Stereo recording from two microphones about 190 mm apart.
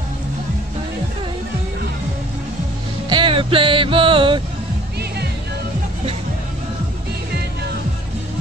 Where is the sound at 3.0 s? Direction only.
25° right (ahead or behind).